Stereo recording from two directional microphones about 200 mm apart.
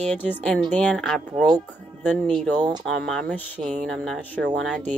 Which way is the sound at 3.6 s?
35° right (ahead or behind).